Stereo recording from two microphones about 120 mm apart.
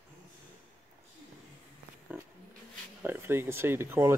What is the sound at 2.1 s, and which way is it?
Roaring cats, 15° right (ahead or behind).